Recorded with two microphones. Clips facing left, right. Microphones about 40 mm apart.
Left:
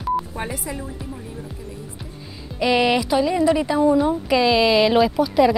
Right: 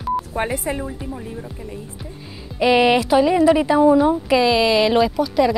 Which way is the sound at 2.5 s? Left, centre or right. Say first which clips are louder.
Right 3 dB; centre.